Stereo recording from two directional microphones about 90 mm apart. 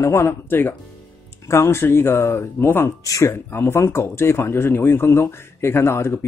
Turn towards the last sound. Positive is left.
turn(degrees=30)  # may be behind; listen again after turning